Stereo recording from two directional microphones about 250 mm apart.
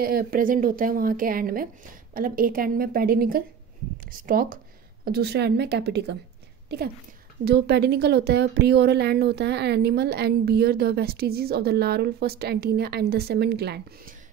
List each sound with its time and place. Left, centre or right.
0.0 s speech: right